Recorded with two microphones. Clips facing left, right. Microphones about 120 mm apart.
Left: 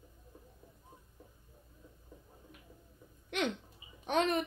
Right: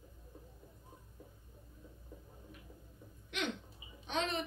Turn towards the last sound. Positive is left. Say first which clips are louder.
# left 6 dB
turn(degrees=50)  # may be behind; listen again after turning